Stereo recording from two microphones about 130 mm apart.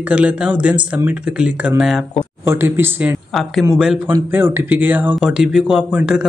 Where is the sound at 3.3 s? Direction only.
Centre (ahead or behind).